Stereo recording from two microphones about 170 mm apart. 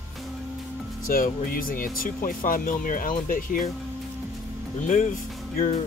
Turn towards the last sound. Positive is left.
turn(degrees=45)  # may be behind; listen again after turning